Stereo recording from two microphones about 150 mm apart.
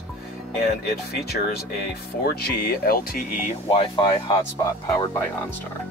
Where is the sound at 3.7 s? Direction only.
30° left (ahead or behind).